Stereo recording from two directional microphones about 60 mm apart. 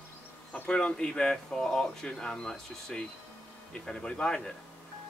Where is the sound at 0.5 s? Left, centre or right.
Left.